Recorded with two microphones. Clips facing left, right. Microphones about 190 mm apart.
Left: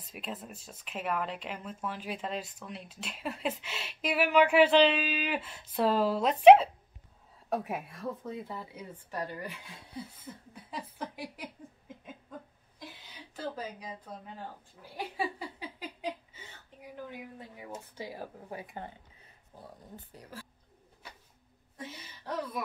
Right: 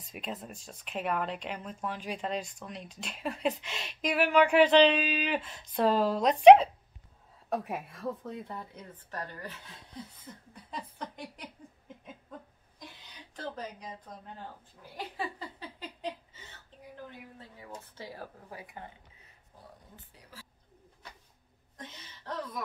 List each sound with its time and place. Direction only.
0.1 s a woman's voice: centre (ahead or behind)
12.3 s a sound: 5° left (ahead or behind)
13.4 s speech: 5° left (ahead or behind)
15.1 s a sound: 10° left (ahead or behind)
17.1 s speech: 15° left (ahead or behind)
18.5 s speech: 25° left (ahead or behind)
20.2 s a woman's voice: 50° left (ahead or behind)
21.7 s speech: 10° left (ahead or behind)